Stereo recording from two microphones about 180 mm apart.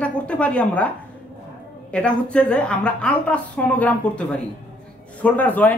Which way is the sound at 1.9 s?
5° left (ahead or behind).